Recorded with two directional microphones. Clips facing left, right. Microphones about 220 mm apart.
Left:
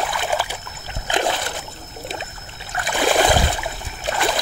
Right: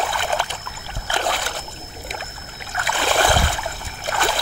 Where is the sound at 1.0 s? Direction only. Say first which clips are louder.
Left 3 dB; 20° left (ahead or behind).